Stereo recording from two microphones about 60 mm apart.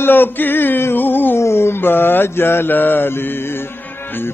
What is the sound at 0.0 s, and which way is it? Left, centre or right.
Music, left.